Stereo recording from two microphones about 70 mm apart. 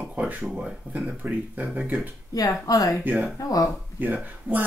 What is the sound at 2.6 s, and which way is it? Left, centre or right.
Speech, left.